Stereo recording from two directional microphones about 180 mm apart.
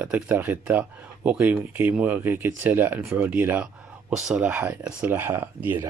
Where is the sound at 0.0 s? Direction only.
10° right (ahead or behind).